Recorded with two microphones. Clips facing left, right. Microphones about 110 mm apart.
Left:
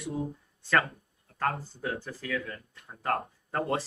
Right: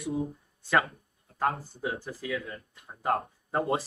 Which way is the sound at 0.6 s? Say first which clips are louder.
Right 1 dB; 15° right (ahead or behind).